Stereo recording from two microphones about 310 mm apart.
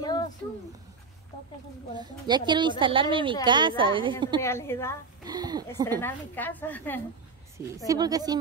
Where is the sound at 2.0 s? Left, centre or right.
Centre.